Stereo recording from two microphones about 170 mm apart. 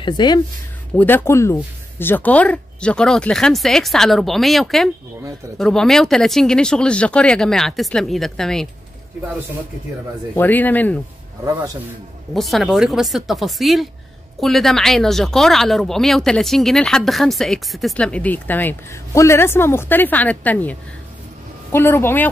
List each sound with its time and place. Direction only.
0.0 s speech: 25° left (ahead or behind)
0.9 s speech: 10° left (ahead or behind)
10.3 s speech: 10° left (ahead or behind)
11.4 s a man's voice: 15° right (ahead or behind)
12.4 s speech: centre (ahead or behind)
21.7 s speech: 15° left (ahead or behind)